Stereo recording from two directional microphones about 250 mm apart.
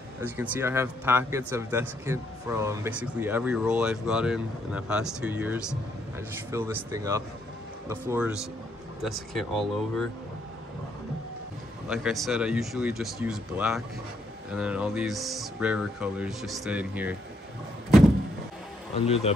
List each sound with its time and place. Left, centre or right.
0.2 s speech: centre
11.9 s speech: centre
19.0 s speech: left